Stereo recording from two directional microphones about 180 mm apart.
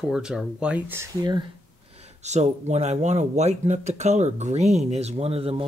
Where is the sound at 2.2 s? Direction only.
40° right (ahead or behind).